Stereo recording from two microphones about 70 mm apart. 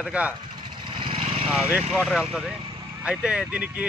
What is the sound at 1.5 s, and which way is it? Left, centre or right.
Speech, centre.